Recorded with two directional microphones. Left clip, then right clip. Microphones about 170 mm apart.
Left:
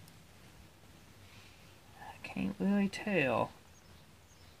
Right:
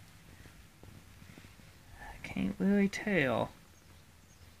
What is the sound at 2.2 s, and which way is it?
Speech, 10° right (ahead or behind).